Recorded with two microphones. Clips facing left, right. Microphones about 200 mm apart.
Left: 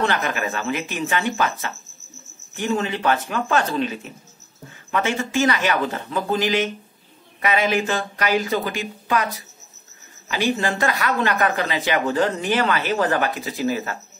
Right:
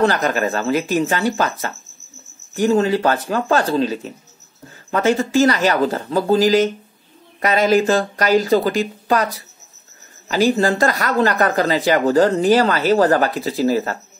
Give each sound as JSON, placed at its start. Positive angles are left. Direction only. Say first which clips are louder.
{"t": 0.0, "sound": "speech", "louder": "right 6 dB", "side_deg": -40}